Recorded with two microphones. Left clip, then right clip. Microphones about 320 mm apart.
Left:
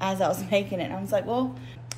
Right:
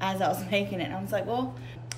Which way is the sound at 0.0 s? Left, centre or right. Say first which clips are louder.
Left 2 dB; left.